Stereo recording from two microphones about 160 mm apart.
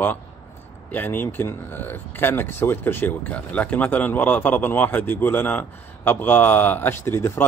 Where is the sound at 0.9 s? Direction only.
10° left (ahead or behind).